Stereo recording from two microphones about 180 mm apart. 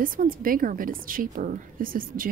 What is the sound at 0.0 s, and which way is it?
A woman's voice, 50° right (ahead or behind).